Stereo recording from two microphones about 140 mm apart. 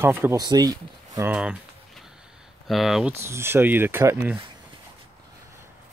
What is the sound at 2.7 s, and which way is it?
Speech, centre (ahead or behind).